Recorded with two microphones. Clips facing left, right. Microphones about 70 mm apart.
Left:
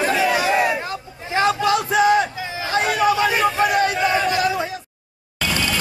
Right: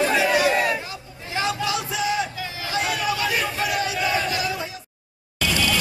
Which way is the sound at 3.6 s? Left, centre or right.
Left.